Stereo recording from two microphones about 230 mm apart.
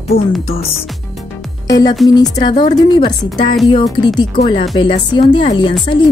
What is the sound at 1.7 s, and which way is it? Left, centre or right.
Speech, centre.